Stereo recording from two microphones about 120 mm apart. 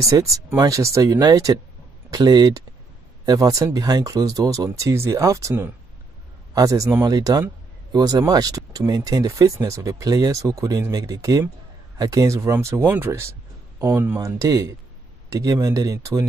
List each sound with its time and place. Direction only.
0.0 s speech: 25° right (ahead or behind)